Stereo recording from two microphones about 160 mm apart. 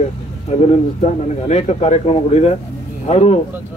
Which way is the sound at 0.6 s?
40° left (ahead or behind).